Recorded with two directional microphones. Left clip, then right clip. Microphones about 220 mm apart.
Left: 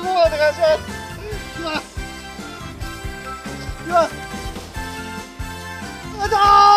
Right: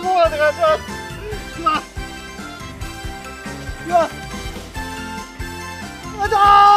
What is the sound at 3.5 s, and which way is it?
Music, centre (ahead or behind).